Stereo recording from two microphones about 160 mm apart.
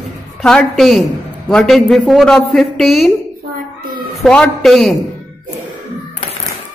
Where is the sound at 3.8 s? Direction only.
70° right (ahead or behind).